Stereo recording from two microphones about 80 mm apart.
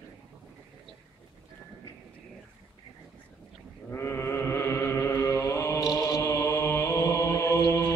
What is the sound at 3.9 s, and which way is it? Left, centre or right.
Mantra, left.